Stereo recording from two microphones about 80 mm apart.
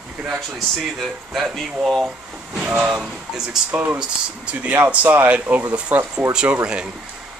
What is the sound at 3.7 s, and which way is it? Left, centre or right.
Speech, right.